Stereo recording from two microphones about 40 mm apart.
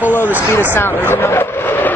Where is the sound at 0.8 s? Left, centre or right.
Left.